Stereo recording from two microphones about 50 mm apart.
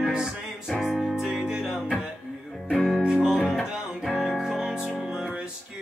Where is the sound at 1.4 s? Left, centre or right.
Centre.